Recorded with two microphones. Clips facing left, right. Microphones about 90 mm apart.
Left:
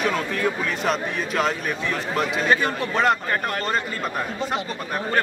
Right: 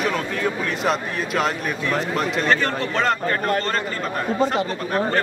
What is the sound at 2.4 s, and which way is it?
Speech, 15° left (ahead or behind).